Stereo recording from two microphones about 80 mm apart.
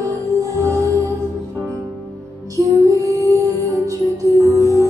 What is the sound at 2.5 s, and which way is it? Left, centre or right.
Music, right.